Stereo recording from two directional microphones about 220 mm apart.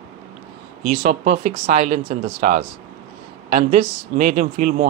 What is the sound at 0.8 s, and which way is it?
Speech, 40° right (ahead or behind).